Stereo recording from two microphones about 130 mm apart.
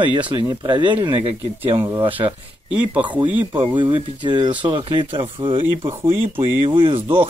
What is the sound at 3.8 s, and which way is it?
Speech, 35° right (ahead or behind).